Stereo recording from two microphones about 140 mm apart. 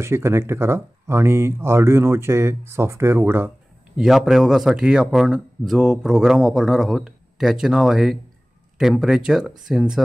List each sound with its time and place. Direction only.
0.0 s speech: 20° right (ahead or behind)
3.9 s speech: centre (ahead or behind)